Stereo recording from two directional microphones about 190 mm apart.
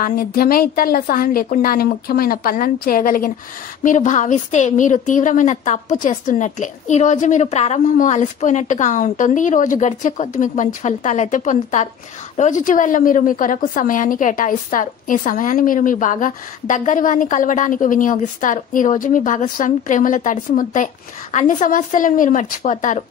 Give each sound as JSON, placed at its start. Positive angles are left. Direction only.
{"t": 0.0, "sound": "a woman's voice", "side_deg": 50}